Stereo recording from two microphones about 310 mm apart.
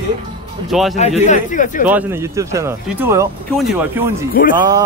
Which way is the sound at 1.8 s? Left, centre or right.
Centre.